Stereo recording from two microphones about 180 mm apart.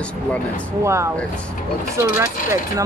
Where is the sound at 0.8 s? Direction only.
15° right (ahead or behind).